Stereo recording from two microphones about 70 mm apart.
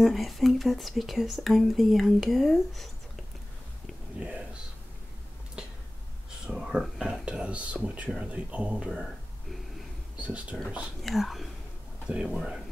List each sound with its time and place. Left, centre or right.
0.0 s speech: centre
6.4 s a sound: centre
7.0 s speech: centre
10.1 s speech: centre
11.0 s speech: centre